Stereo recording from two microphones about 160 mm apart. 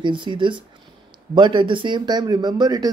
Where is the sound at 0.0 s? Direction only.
30° right (ahead or behind).